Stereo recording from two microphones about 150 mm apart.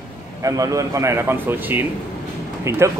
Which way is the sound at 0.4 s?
20° right (ahead or behind).